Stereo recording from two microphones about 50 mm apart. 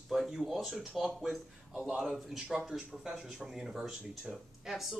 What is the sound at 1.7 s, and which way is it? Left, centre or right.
Speech, right.